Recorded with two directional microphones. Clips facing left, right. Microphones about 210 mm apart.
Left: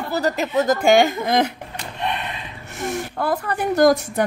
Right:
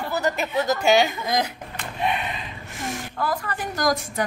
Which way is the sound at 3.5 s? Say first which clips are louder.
Left 11 dB; 60° left (ahead or behind).